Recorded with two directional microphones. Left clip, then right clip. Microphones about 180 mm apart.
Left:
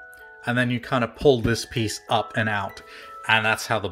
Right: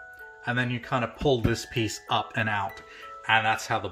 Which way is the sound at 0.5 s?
40° left (ahead or behind).